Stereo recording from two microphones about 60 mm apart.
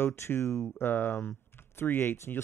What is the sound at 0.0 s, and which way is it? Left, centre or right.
Speech, left.